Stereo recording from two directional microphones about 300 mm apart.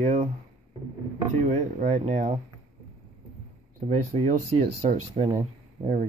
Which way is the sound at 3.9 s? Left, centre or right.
Right.